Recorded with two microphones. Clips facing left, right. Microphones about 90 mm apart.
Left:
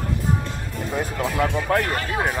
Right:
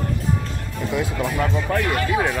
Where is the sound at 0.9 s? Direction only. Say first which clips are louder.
Right 1 dB; 40° left (ahead or behind).